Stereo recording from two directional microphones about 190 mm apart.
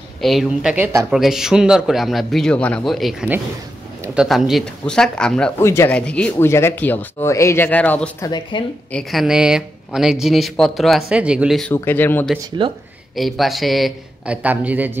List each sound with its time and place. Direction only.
0.2 s speech: centre (ahead or behind)
8.3 s speech: 25° left (ahead or behind)
8.9 s speech: centre (ahead or behind)
11.7 s speech: 10° left (ahead or behind)
12.6 s speech: 25° right (ahead or behind)
13.1 s speech: centre (ahead or behind)